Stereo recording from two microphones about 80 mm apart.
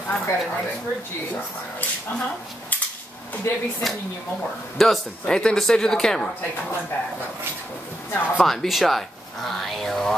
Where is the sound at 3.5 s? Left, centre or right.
Left.